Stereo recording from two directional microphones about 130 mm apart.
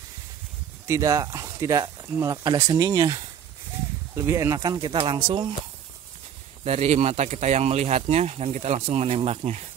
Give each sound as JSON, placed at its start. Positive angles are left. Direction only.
{"t": 0.8, "sound": "speech", "side_deg": -25}
{"t": 6.6, "sound": "speech", "side_deg": -55}